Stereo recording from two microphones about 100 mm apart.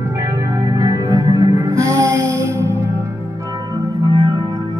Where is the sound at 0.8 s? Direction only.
40° right (ahead or behind).